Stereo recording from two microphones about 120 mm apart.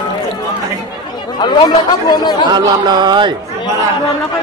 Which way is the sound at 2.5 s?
40° right (ahead or behind).